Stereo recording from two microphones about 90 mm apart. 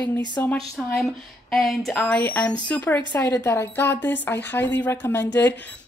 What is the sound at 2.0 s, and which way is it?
Speech, 20° left (ahead or behind).